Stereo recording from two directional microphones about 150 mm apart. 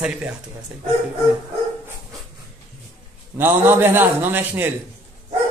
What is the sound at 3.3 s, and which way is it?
A man's voice, 15° right (ahead or behind).